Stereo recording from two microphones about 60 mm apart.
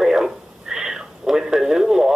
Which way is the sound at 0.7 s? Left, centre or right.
Centre.